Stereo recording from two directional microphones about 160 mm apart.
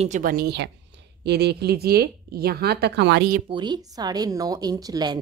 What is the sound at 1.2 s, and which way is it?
Speech, 90° right.